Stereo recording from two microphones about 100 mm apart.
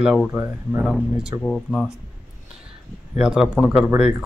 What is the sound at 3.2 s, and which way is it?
Speech, 5° right (ahead or behind).